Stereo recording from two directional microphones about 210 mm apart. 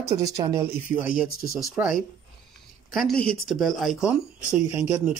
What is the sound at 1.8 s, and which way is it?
Speech, 10° right (ahead or behind).